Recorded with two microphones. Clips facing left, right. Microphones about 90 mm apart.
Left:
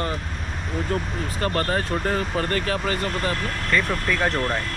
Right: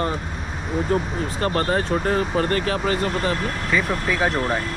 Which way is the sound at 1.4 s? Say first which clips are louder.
Right 2 dB; 30° right (ahead or behind).